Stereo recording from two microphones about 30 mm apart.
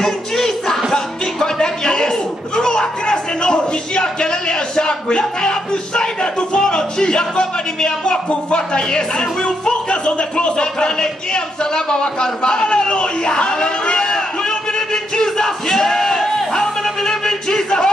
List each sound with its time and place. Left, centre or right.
0.0 s music: centre
0.9 s music: left
2.0 s speech: left
16.8 s a sound: centre